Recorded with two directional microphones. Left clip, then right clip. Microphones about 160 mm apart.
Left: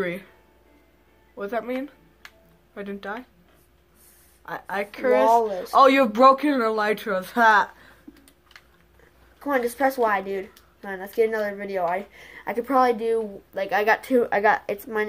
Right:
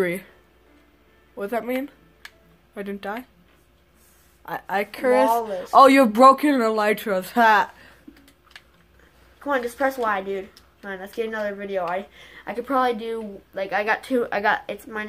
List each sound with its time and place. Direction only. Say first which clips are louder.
0.0 s a man's voice: right 4 dB; 35° right (ahead or behind)
1.4 s a man's voice: right 2 dB; 30° right (ahead or behind)
4.5 s a man's voice: right 3 dB; 35° right (ahead or behind)
5.3 s speech: left 3 dB; 40° left (ahead or behind)
5.7 s a man's voice: right 4 dB; 40° right (ahead or behind)
6.4 s a woman's voice: right 2 dB; 30° right (ahead or behind)
9.4 s speech: even; 40° left (ahead or behind)